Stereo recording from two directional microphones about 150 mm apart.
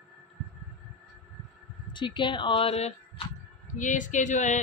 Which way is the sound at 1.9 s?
30° left (ahead or behind).